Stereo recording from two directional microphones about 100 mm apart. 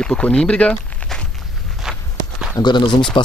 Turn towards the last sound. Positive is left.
turn(degrees=50)  # may be behind; listen again after turning